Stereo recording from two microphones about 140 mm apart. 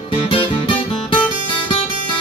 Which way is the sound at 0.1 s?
40° left (ahead or behind).